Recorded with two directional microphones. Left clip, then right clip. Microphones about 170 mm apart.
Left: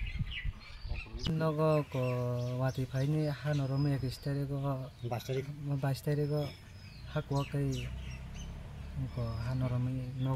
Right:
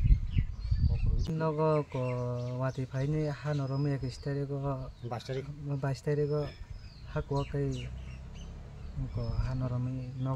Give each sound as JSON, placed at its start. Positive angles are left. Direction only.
{"t": 1.2, "sound": "speech", "side_deg": 0}
{"t": 5.1, "sound": "speech", "side_deg": 30}
{"t": 5.7, "sound": "speech", "side_deg": -5}
{"t": 9.2, "sound": "speech", "side_deg": -5}